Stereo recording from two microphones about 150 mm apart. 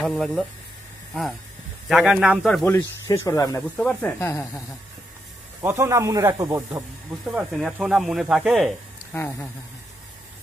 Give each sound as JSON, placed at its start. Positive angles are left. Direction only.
{"t": 0.0, "sound": "speech", "side_deg": 5}
{"t": 1.9, "sound": "speech", "side_deg": -5}
{"t": 2.6, "sound": "speech", "side_deg": 15}
{"t": 3.7, "sound": "speech", "side_deg": 5}
{"t": 4.2, "sound": "speech", "side_deg": 20}
{"t": 5.6, "sound": "speech", "side_deg": -20}
{"t": 7.2, "sound": "speech", "side_deg": -5}
{"t": 9.1, "sound": "speech", "side_deg": 15}